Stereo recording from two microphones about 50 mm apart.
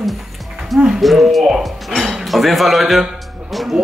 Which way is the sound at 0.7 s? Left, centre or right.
Centre.